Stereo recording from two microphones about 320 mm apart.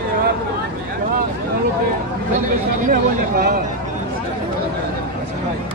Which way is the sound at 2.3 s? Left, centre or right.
Right.